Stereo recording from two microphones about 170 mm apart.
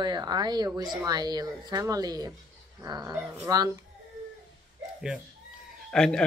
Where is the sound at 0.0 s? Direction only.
25° right (ahead or behind).